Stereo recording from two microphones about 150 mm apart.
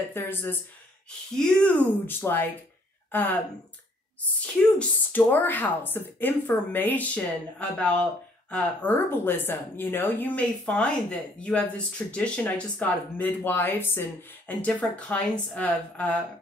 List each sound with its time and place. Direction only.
0.1 s speech: 15° left (ahead or behind)
4.4 s speech: 10° left (ahead or behind)